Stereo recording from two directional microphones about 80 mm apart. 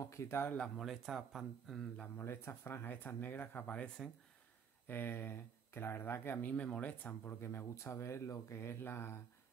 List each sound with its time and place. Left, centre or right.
0.0 s speech: left
0.6 s speech: centre
2.1 s speech: left; by 4.1 s centre
4.8 s speech: left